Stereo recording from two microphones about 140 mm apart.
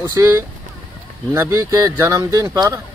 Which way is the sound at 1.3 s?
20° right (ahead or behind).